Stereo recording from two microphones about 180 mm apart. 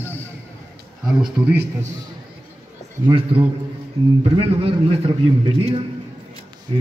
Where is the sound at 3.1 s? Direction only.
30° right (ahead or behind).